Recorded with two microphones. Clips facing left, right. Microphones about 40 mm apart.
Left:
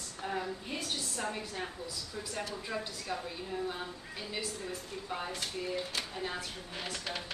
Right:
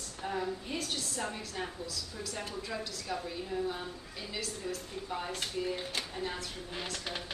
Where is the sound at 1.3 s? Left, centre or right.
Left.